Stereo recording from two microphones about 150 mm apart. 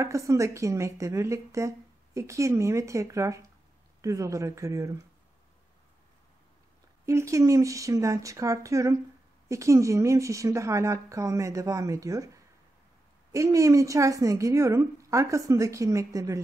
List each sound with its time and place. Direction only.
0.0 s a woman's voice: 20° right (ahead or behind)
7.1 s a woman's voice: 20° right (ahead or behind)
13.3 s a woman's voice: 20° right (ahead or behind)